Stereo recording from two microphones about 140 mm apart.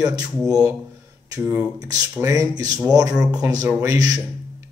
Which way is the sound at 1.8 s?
25° right (ahead or behind).